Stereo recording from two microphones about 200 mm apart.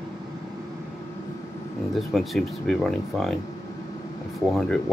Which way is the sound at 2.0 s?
Centre (ahead or behind).